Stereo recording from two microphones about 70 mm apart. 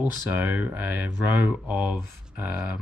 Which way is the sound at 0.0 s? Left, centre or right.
Right.